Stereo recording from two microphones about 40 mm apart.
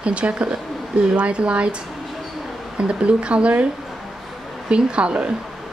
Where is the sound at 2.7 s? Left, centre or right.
Right.